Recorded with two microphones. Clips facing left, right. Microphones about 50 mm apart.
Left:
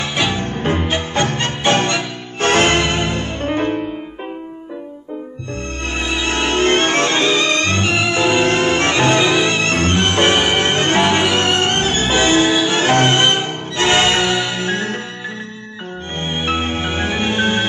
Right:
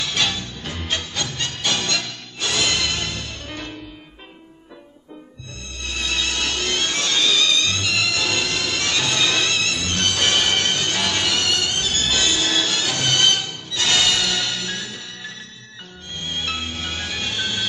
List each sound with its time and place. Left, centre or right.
0.0 s music: left
0.4 s music: left
5.9 s music: left
9.7 s music: left
12.4 s music: centre
12.7 s music: left
16.2 s music: left